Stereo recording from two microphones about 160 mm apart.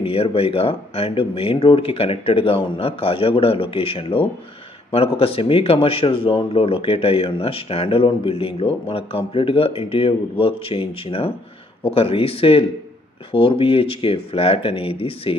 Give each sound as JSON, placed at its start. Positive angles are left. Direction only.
{"t": 0.0, "sound": "speech", "side_deg": 35}